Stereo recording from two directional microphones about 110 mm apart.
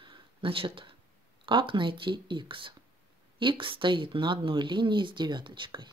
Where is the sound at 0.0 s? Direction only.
50° right (ahead or behind).